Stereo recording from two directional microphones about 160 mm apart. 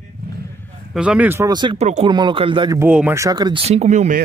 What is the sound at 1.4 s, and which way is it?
Speech, 25° right (ahead or behind).